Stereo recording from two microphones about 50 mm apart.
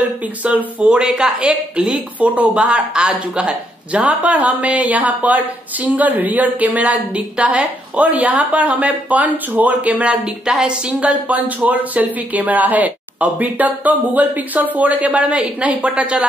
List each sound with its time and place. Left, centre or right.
0.4 s speech: right
0.8 s speech: centre
2.1 s a woman's voice: right
10.9 s a woman's voice: right